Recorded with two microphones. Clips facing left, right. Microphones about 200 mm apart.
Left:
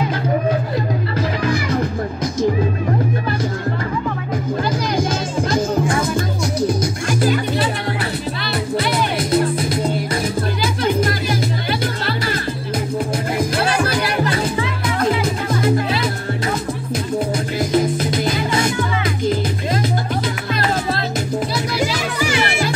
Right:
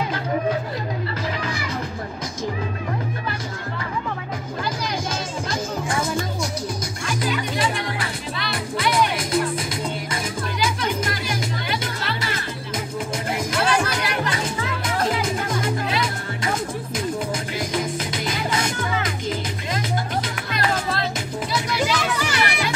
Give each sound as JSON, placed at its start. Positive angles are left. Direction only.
{"t": 7.1, "sound": "music", "side_deg": 45}
{"t": 8.7, "sound": "music", "side_deg": 35}
{"t": 10.6, "sound": "music", "side_deg": 35}
{"t": 13.4, "sound": "music", "side_deg": 35}
{"t": 15.6, "sound": "music", "side_deg": 35}
{"t": 17.6, "sound": "music", "side_deg": 35}
{"t": 22.5, "sound": "music", "side_deg": 30}